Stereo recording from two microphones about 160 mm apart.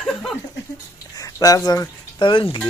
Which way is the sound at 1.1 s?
25° left (ahead or behind).